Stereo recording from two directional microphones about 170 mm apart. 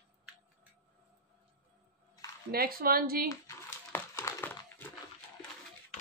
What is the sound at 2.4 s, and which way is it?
Speech, 60° right (ahead or behind).